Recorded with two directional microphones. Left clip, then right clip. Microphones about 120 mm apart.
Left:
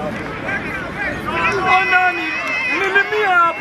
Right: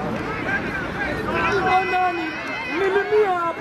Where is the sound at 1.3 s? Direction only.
15° left (ahead or behind).